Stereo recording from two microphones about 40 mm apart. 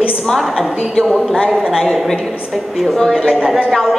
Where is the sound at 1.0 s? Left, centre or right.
Centre.